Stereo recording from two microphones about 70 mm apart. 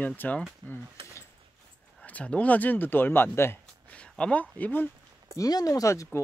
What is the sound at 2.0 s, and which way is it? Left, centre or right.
Speech, centre.